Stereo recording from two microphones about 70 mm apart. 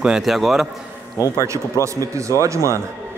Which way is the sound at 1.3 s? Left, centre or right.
Right.